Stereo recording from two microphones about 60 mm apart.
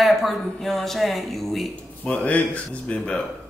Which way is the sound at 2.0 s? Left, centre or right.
Left.